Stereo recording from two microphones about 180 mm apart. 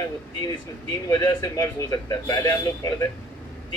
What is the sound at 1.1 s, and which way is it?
A man's voice, 20° left (ahead or behind).